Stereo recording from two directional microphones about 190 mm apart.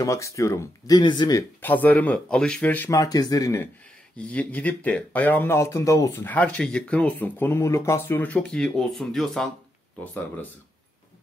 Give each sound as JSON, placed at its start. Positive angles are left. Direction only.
{"t": 0.0, "sound": "speech", "side_deg": 15}
{"t": 1.6, "sound": "speech", "side_deg": 10}
{"t": 4.2, "sound": "speech", "side_deg": 5}